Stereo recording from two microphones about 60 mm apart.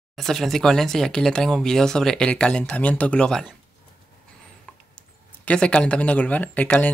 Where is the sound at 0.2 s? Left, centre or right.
Centre.